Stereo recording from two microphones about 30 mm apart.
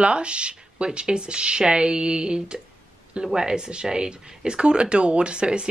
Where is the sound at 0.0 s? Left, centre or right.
Right.